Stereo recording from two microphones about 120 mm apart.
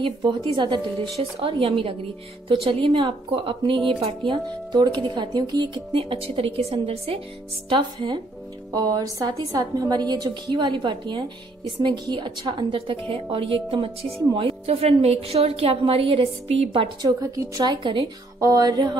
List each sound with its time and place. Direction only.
0.0 s speech: 45° right (ahead or behind)
8.7 s a woman's voice: 30° right (ahead or behind); by 17.1 s 50° right (ahead or behind)
17.2 s a woman's voice: 30° right (ahead or behind)
18.4 s a woman's voice: 30° right (ahead or behind)